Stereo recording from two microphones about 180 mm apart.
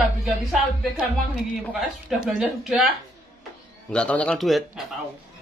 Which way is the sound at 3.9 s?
5° left (ahead or behind).